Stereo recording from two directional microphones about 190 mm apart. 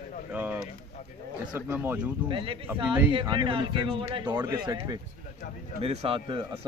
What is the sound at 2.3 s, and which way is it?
A man's voice, 25° right (ahead or behind).